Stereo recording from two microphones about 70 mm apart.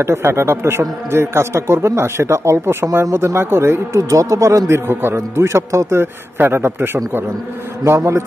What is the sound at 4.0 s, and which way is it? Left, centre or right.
A man's voice, right.